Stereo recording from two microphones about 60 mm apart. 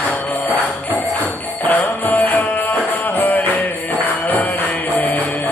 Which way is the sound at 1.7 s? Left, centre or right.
Left.